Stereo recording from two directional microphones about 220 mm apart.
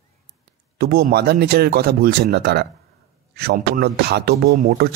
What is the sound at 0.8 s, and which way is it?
Speech, 45° right (ahead or behind).